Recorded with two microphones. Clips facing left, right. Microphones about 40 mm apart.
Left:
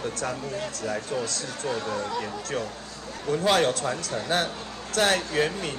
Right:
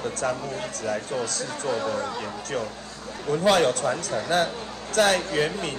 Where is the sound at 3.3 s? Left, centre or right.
Left.